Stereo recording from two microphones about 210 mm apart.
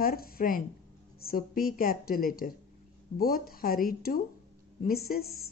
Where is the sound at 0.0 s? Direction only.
45° left (ahead or behind).